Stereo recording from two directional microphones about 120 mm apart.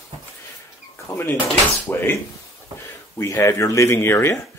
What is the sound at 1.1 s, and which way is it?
Speech, 20° left (ahead or behind).